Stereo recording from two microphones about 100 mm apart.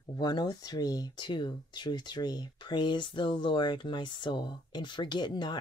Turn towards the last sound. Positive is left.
turn(degrees=45)  # may be behind; listen again after turning